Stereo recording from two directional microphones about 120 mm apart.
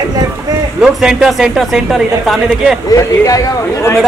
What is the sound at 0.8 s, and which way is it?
A woman's voice, 5° right (ahead or behind).